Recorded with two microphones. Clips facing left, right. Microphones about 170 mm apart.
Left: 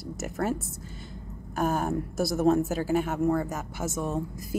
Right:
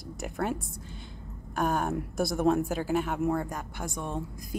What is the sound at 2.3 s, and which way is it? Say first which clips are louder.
Speech: left 3 dB; 40° left (ahead or behind).